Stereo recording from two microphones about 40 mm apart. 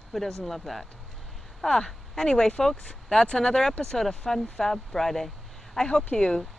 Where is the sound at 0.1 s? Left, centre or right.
Centre.